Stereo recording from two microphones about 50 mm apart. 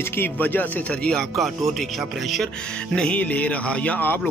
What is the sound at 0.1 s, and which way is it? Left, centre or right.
Speech, left.